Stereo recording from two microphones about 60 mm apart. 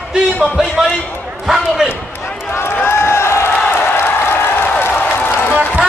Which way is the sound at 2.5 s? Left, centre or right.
Left.